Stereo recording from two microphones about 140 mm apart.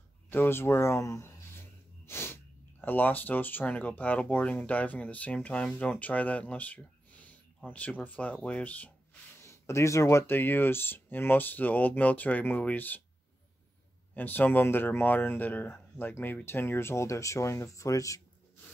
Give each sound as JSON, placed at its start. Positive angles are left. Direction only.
{"t": 0.3, "sound": "speech", "side_deg": 15}
{"t": 2.0, "sound": "sneeze", "side_deg": 15}
{"t": 2.8, "sound": "speech", "side_deg": 15}
{"t": 9.4, "sound": "speech", "side_deg": 20}
{"t": 14.1, "sound": "speech", "side_deg": 15}